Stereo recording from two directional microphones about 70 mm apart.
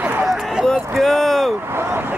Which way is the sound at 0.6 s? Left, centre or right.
Centre.